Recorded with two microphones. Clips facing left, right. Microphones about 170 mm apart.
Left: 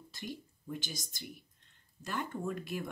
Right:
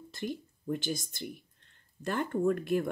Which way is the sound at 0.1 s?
50° right (ahead or behind).